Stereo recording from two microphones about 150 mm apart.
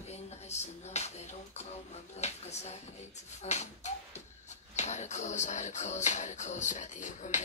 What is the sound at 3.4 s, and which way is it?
Music, 50° left (ahead or behind).